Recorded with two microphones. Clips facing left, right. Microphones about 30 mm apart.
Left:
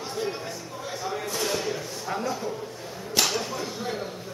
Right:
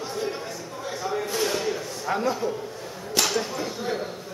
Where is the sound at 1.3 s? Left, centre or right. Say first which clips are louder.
Right 2 dB; centre.